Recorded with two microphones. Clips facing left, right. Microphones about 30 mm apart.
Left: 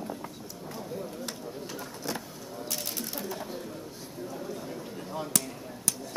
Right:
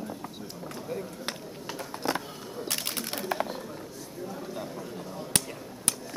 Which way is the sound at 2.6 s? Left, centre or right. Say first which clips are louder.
Right 3 dB; right.